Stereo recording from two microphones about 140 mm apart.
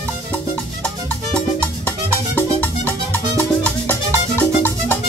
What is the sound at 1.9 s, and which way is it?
Music, 15° left (ahead or behind).